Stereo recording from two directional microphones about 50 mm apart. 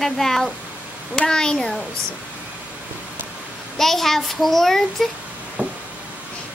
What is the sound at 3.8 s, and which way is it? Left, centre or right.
A child's voice, centre.